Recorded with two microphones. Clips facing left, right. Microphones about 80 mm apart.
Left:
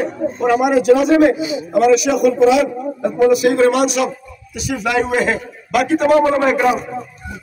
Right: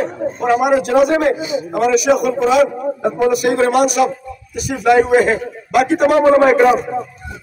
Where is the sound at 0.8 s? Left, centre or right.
Right.